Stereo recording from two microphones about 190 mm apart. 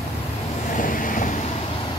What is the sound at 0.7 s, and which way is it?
Vehicle, 45° left (ahead or behind).